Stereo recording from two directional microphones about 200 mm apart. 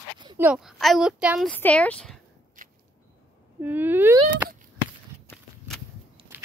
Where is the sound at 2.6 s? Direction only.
40° right (ahead or behind).